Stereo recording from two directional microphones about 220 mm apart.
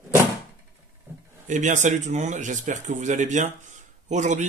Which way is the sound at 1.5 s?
35° right (ahead or behind).